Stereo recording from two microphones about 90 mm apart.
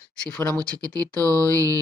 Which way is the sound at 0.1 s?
10° left (ahead or behind).